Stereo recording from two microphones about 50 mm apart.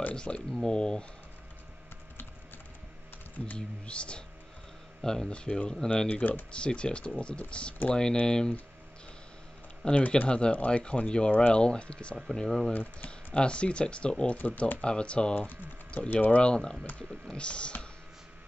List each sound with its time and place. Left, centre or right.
0.1 s speech: centre
3.5 s speech: left
5.0 s speech: centre
6.0 s speech: left
9.8 s speech: left
10.5 s speech: left
10.8 s speech: centre
12.4 s speech: centre
13.3 s speech: left
14.3 s speech: left
14.8 s speech: left
15.3 s speech: left